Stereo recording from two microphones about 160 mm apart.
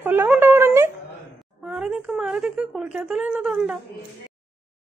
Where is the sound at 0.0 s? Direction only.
10° right (ahead or behind).